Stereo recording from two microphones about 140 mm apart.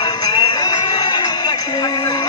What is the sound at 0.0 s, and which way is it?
Music, 30° left (ahead or behind).